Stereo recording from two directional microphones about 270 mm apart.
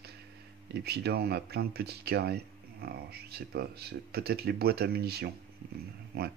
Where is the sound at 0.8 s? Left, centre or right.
Right.